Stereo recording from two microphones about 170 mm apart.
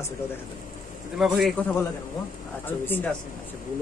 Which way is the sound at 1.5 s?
10° left (ahead or behind).